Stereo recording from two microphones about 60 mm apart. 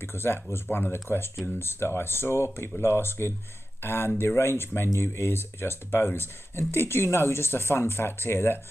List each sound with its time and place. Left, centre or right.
0.0 s speech: left
0.9 s speech: left